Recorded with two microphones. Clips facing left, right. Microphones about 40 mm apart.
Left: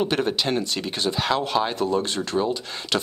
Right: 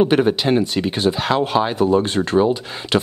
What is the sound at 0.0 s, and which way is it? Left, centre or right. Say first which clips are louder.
Speech: right 7 dB; centre.